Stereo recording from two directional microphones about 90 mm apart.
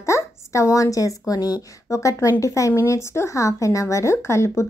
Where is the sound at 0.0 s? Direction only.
35° left (ahead or behind).